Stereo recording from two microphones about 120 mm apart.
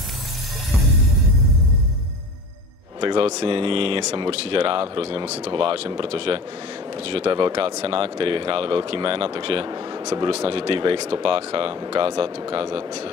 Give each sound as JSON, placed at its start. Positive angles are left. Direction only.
{"t": 3.0, "sound": "speech", "side_deg": -45}
{"t": 9.7, "sound": "speech", "side_deg": -30}
{"t": 10.2, "sound": "speech", "side_deg": -50}